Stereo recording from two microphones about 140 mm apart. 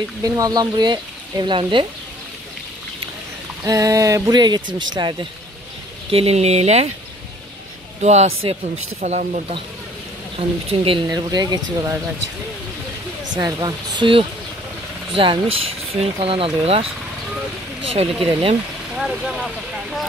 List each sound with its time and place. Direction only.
0.2 s speech: 25° right (ahead or behind)
3.6 s speech: 25° right (ahead or behind)
6.0 s speech: 45° right (ahead or behind)
8.0 s speech: 55° right (ahead or behind)
10.7 s speech: 40° right (ahead or behind)
11.1 s speech: 30° right (ahead or behind)
13.4 s speech: 30° right (ahead or behind); by 16.8 s 45° right (ahead or behind)
17.8 s speech: 45° right (ahead or behind)
18.9 s speech: 5° right (ahead or behind)